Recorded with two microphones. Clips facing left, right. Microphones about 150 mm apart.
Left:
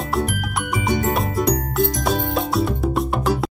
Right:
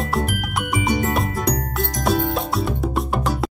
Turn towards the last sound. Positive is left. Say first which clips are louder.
# left 2 dB
turn(degrees=0)  # may be behind; listen again after turning